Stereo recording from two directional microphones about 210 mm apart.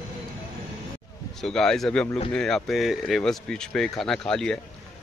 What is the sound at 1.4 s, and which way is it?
Speech, 5° left (ahead or behind).